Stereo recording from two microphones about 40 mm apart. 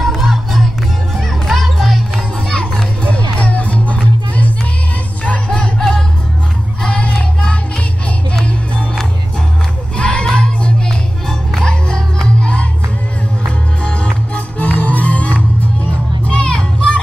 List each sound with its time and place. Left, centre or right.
0.0 s music: centre
2.4 s children playing: left
3.1 s music: left
5.8 s music: centre
6.8 s crowd: left
9.9 s crowd: left
10.2 s music: left
14.6 s music: left
16.3 s music: left